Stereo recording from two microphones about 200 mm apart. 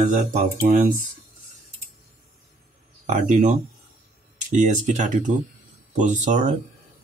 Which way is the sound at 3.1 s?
35° right (ahead or behind).